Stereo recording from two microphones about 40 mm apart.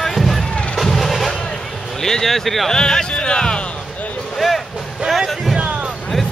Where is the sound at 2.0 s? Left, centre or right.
Centre.